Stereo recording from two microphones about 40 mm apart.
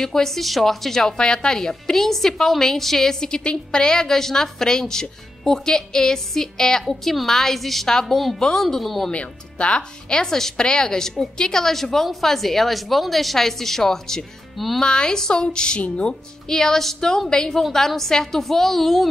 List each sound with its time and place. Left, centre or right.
0.0 s a woman's voice: centre
1.6 s a woman's voice: centre
9.1 s a woman's voice: left
16.4 s a woman's voice: centre